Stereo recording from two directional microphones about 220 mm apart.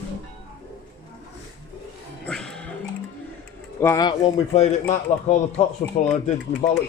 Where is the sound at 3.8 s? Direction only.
15° left (ahead or behind).